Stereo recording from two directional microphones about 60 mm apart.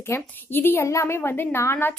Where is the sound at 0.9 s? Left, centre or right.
Left.